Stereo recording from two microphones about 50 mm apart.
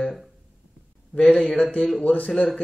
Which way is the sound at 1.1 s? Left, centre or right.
Centre.